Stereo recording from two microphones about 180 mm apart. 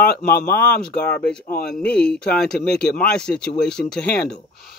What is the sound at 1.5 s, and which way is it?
Speech, 60° left (ahead or behind).